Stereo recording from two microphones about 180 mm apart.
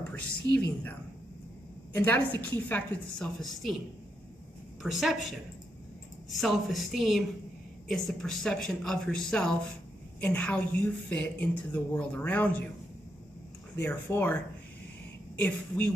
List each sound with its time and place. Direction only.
0.1 s a woman's voice: 10° left (ahead or behind)
2.0 s a woman's voice: 10° left (ahead or behind)
4.8 s speech: centre (ahead or behind)
6.3 s a woman's voice: centre (ahead or behind)
13.7 s a woman's voice: 10° left (ahead or behind)